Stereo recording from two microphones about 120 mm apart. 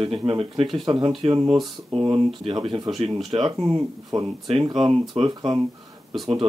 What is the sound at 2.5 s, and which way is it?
Speech, 35° right (ahead or behind).